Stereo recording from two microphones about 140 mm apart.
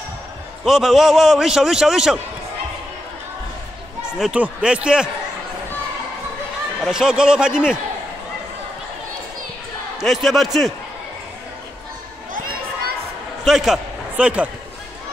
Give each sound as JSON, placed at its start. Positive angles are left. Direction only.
{"t": 0.7, "sound": "a man's voice", "side_deg": 0}
{"t": 4.0, "sound": "speech", "side_deg": -5}
{"t": 6.8, "sound": "a man's voice", "side_deg": -5}
{"t": 9.9, "sound": "a man's voice", "side_deg": 0}
{"t": 12.4, "sound": "a sound", "side_deg": -90}
{"t": 13.5, "sound": "a man's voice", "side_deg": 0}